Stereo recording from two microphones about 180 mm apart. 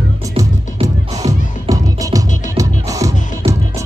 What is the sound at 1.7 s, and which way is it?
Music, 20° right (ahead or behind).